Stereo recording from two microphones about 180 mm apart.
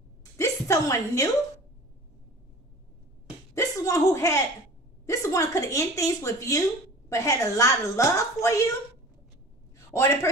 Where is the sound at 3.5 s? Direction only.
15° left (ahead or behind).